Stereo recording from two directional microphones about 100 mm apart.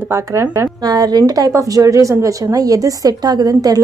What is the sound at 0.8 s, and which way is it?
A woman's voice, 40° right (ahead or behind).